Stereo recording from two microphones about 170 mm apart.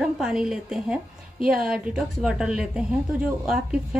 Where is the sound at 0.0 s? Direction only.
5° right (ahead or behind).